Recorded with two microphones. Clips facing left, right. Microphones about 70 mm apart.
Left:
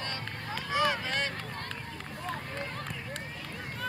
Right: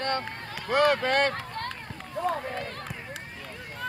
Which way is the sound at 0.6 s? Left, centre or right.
Right.